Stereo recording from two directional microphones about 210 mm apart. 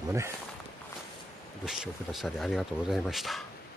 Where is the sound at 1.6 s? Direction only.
Centre (ahead or behind).